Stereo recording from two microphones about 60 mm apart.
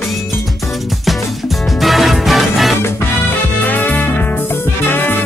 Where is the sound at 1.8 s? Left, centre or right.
Centre.